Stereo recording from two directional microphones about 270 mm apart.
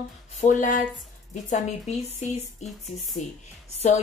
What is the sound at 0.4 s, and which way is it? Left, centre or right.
Speech, left.